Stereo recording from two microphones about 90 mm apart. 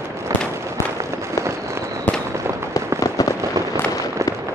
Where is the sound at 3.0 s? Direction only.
40° left (ahead or behind).